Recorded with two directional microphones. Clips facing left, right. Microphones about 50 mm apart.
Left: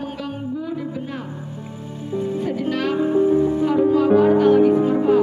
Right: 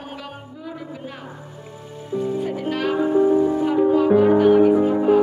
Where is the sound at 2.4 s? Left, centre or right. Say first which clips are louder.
Left 1 dB; centre.